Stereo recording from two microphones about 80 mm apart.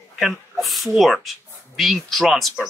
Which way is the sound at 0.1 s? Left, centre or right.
Centre.